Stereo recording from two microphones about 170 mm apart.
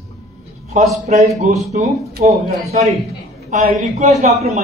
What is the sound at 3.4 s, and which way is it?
A man's voice, 45° right (ahead or behind).